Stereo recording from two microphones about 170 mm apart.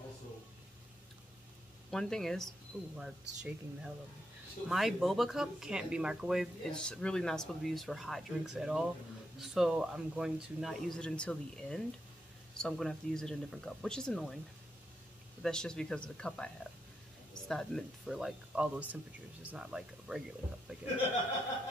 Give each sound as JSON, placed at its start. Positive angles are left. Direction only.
{"t": 1.9, "sound": "speech", "side_deg": 5}
{"t": 15.4, "sound": "speech", "side_deg": 5}
{"t": 17.5, "sound": "speech", "side_deg": 0}